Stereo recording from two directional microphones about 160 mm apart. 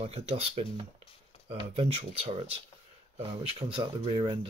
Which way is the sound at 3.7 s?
30° right (ahead or behind).